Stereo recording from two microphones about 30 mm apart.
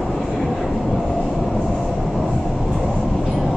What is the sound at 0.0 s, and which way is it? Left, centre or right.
Vehicle, centre.